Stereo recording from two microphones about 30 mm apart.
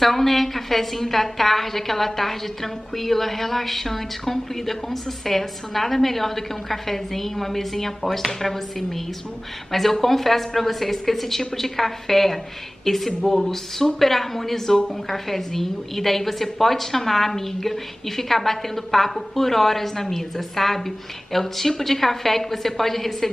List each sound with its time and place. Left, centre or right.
0.0 s a woman's voice: centre